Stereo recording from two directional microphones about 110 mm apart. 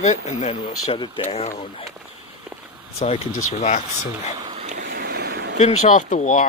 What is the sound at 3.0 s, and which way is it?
Speech, 80° left.